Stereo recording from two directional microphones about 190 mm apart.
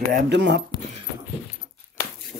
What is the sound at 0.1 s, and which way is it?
Speech, 65° right (ahead or behind).